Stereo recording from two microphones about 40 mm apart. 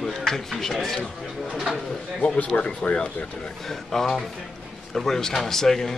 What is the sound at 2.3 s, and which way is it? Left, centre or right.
Speech, left.